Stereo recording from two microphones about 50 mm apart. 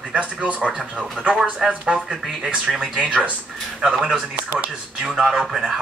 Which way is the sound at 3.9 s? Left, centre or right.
Centre.